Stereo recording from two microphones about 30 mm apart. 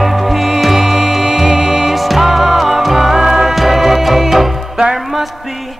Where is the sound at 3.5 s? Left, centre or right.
Centre.